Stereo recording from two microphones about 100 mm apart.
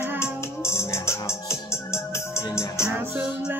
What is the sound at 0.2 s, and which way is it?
Music, 25° left (ahead or behind).